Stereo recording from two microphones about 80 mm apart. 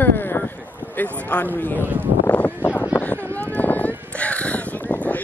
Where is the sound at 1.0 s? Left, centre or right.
Left.